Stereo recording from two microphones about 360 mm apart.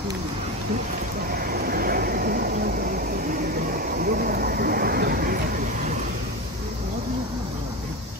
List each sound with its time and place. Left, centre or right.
1.5 s vehicle: right